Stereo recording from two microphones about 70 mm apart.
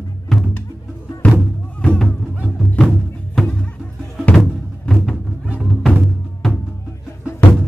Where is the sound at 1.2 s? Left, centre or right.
Left.